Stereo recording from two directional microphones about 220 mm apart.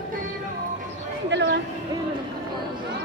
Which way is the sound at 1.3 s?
55° right (ahead or behind).